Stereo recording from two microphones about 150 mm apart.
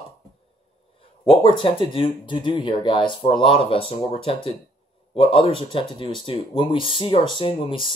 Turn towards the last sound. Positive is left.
turn(degrees=35)  # may be behind; listen again after turning